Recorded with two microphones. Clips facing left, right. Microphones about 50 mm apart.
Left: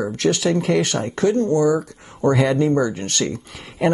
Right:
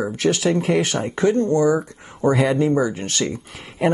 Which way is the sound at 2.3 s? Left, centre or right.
Centre.